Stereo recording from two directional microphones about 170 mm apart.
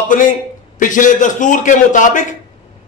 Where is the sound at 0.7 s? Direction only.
50° left (ahead or behind).